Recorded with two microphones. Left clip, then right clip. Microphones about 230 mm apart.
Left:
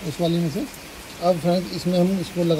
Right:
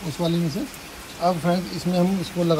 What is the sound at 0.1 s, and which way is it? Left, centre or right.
Speech, centre.